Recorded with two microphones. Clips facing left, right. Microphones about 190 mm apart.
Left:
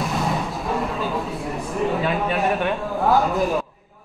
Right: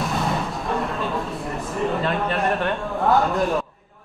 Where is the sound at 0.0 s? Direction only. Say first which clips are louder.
Even; centre (ahead or behind).